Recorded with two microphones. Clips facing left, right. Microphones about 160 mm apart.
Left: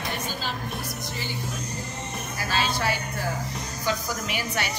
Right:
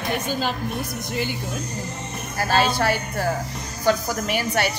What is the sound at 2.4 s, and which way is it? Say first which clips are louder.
A woman's voice: right 7 dB; 55° right (ahead or behind).